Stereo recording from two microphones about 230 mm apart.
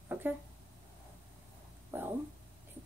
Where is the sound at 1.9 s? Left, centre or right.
Centre.